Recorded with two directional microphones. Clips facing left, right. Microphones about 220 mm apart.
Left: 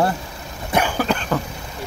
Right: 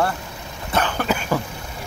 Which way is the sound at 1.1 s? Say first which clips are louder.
Even; 5° right (ahead or behind).